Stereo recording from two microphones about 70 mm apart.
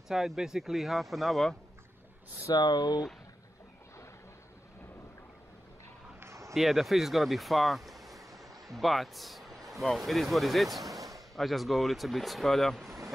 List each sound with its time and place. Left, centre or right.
0.1 s speech: centre
2.5 s speech: left
6.1 s a sound: right
6.5 s speech: centre